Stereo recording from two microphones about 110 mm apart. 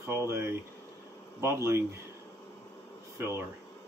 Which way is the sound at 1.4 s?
25° right (ahead or behind).